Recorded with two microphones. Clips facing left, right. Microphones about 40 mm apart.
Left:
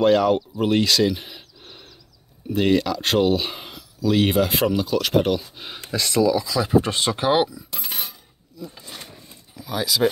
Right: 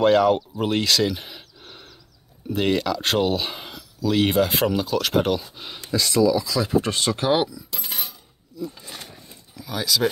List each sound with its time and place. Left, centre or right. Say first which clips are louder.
0.0 s speech: even; centre
1.6 s a sound: right 1 dB; centre
2.5 s speech: left 2 dB; centre
5.8 s speech: even; left
6.2 s speech: even; centre
7.8 s a sound: left 1 dB; centre
8.5 s speech: right 3 dB; centre